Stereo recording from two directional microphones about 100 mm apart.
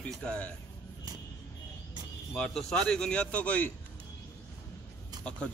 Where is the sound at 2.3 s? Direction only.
5° left (ahead or behind).